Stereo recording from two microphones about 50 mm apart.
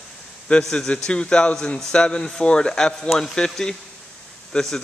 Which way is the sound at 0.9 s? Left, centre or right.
Centre.